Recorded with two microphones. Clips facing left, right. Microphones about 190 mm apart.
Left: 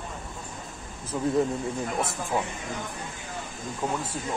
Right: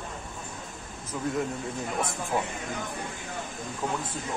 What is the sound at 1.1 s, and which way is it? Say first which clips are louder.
Speech: left 4 dB; 25° left (ahead or behind).